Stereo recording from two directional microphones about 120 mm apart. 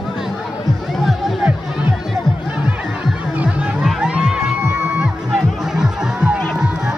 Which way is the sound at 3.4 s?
10° right (ahead or behind).